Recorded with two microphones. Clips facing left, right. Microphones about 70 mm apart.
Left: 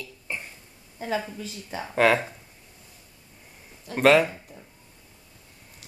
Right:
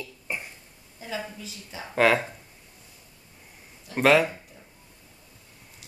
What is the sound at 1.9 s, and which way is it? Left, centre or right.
Speech, centre.